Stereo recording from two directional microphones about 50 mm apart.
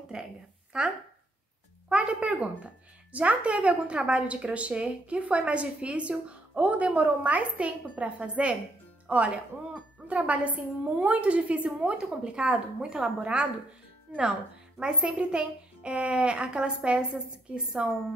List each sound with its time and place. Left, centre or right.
0.1 s a woman's voice: centre
1.9 s a woman's voice: right